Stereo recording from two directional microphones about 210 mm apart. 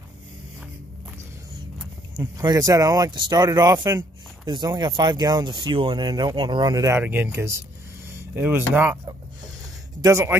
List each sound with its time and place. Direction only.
1.8 s speech: 15° right (ahead or behind)